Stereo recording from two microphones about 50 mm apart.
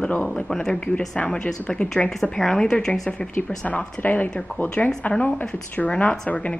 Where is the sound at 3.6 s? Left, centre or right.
Left.